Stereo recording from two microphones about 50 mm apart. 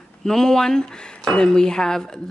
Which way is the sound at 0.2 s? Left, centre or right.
Centre.